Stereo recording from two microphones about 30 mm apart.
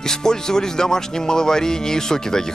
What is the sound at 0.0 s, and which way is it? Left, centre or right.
Speech, centre.